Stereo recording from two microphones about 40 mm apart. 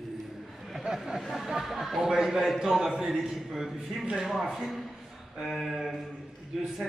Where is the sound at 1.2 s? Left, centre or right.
Centre.